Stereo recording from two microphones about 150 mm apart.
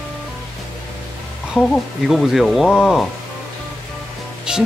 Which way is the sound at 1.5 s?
Centre (ahead or behind).